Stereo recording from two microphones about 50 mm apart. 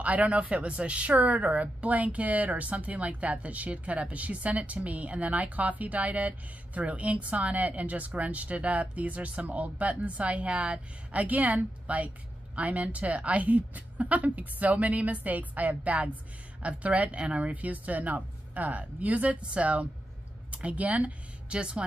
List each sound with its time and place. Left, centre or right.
0.0 s a woman's voice: right